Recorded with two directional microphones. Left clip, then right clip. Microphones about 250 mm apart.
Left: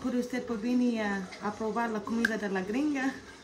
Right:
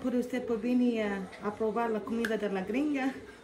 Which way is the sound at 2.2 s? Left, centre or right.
Centre.